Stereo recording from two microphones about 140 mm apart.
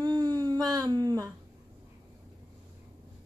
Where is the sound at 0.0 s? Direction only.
30° right (ahead or behind).